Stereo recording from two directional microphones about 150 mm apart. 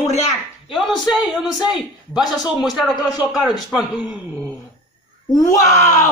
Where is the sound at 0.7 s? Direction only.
Centre (ahead or behind).